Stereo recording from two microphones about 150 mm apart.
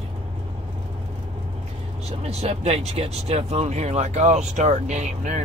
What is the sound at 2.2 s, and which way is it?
Speech, 45° right (ahead or behind).